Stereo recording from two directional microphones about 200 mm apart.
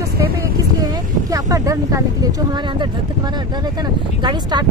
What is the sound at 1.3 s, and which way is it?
Speech, 15° right (ahead or behind).